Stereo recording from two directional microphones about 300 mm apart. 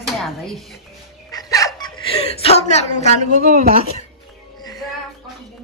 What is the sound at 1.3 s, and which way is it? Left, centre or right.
Chicken, centre.